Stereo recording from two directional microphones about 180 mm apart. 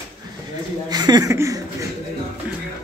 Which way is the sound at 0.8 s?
20° right (ahead or behind).